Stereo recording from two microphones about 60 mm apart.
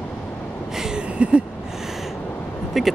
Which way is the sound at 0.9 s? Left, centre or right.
Centre.